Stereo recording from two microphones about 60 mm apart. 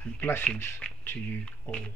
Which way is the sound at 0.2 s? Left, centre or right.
Left.